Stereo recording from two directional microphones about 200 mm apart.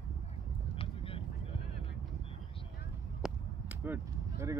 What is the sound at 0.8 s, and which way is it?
Vehicle, 30° left (ahead or behind).